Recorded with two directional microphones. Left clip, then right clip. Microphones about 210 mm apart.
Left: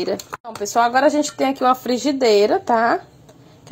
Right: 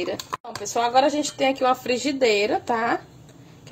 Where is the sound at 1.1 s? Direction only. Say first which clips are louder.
Left 4 dB; 30° left (ahead or behind).